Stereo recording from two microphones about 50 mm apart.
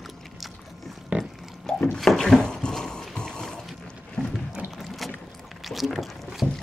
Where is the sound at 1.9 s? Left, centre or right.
Centre.